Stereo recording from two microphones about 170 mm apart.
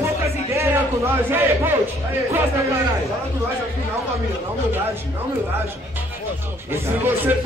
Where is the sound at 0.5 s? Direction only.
15° right (ahead or behind).